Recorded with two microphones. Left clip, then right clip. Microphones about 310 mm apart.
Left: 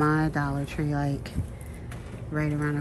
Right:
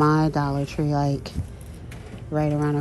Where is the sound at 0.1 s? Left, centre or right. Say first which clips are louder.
Right 4 dB; centre.